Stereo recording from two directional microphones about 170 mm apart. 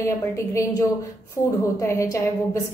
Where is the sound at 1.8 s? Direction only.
15° left (ahead or behind).